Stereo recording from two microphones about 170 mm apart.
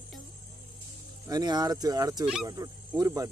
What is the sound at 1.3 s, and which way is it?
Speech, 25° right (ahead or behind).